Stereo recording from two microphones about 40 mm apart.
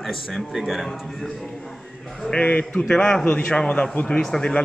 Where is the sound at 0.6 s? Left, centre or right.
Centre.